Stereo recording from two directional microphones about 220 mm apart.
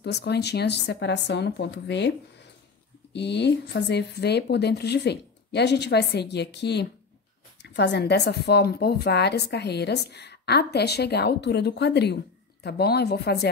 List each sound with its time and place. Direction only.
0.0 s a woman's voice: 50° left (ahead or behind)